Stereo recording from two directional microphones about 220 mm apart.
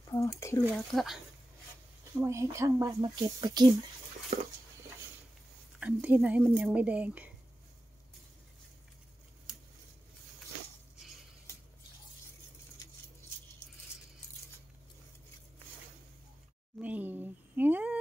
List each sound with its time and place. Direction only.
0.1 s speech: 15° left (ahead or behind)
0.9 s speech: centre (ahead or behind)
2.1 s speech: 15° right (ahead or behind)
4.3 s a sound: 30° right (ahead or behind)
5.8 s speech: 5° right (ahead or behind)
16.8 s a sound: 10° right (ahead or behind)